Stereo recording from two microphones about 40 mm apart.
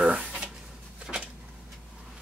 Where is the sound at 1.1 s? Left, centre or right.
Centre.